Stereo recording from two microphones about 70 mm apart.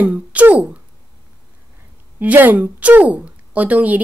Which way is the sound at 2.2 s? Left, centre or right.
Right.